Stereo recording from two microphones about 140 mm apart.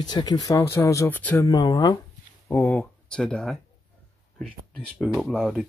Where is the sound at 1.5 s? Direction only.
30° left (ahead or behind).